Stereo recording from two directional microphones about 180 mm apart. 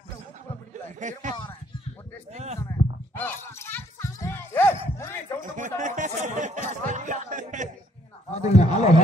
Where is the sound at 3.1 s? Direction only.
10° left (ahead or behind).